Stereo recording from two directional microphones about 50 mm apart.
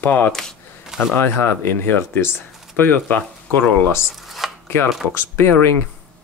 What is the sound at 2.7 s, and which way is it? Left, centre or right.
Speech, left.